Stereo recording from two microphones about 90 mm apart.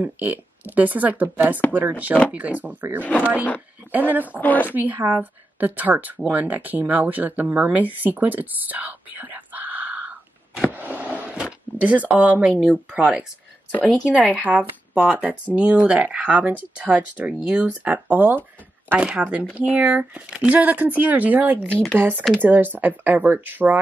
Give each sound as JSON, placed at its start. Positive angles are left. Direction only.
{"t": 0.0, "sound": "speech", "side_deg": -20}
{"t": 3.0, "sound": "speech", "side_deg": 15}
{"t": 3.9, "sound": "speech", "side_deg": -20}
{"t": 4.4, "sound": "speech", "side_deg": 20}
{"t": 4.7, "sound": "speech", "side_deg": -20}
{"t": 10.7, "sound": "a sound", "side_deg": -20}
{"t": 11.8, "sound": "speech", "side_deg": -15}